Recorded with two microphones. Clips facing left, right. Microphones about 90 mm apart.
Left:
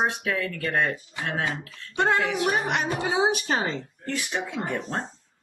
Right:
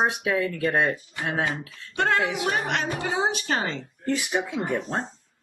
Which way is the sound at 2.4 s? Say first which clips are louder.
Left 1 dB; 10° left (ahead or behind).